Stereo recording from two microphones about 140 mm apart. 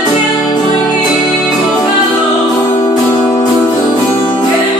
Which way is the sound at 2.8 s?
50° left (ahead or behind).